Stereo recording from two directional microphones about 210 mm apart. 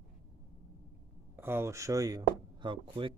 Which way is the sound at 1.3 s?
10° right (ahead or behind).